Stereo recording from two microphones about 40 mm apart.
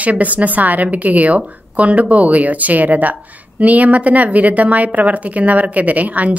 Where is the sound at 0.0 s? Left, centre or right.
Right.